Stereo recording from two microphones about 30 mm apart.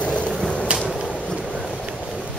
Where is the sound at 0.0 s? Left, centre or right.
Left.